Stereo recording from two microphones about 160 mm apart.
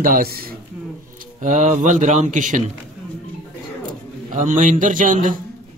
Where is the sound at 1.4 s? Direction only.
50° right (ahead or behind).